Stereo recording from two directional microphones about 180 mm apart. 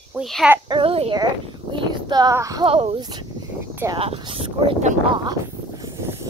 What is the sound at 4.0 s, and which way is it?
Speech, 30° right (ahead or behind).